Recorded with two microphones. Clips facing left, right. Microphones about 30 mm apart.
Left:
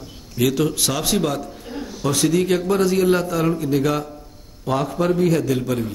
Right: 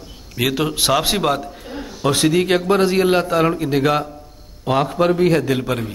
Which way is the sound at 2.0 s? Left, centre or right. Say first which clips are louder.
Right 2 dB; right.